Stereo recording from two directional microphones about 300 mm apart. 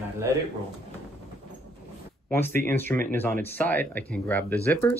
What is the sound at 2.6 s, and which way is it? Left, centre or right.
Speech, centre.